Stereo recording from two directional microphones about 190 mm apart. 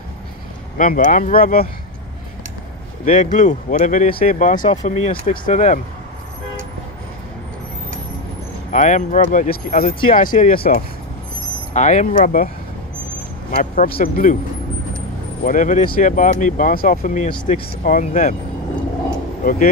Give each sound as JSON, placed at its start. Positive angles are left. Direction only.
{"t": 0.7, "sound": "speech", "side_deg": 45}
{"t": 3.1, "sound": "speech", "side_deg": 40}
{"t": 8.7, "sound": "speech", "side_deg": 40}
{"t": 13.6, "sound": "speech", "side_deg": 50}
{"t": 15.4, "sound": "speech", "side_deg": 45}